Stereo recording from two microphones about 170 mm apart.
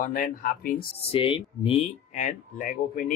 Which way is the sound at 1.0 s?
35° left (ahead or behind).